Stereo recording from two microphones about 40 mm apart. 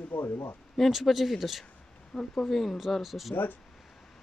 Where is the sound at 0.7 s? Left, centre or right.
Centre.